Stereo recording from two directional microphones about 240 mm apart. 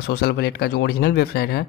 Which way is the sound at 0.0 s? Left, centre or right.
Left.